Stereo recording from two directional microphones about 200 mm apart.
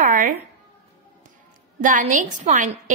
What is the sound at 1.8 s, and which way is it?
Speech, 40° right (ahead or behind).